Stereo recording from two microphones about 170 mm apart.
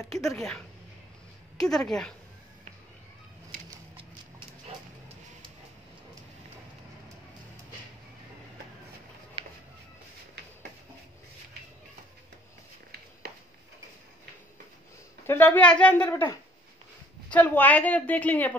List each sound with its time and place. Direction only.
0.0 s a woman's voice: centre (ahead or behind)
3.9 s clip-clop: 30° right (ahead or behind)
9.4 s music: 35° right (ahead or behind)
15.2 s a woman's voice: 10° left (ahead or behind)
17.3 s a woman's voice: 10° left (ahead or behind)